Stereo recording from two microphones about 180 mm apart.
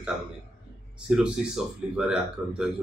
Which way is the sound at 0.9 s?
5° right (ahead or behind).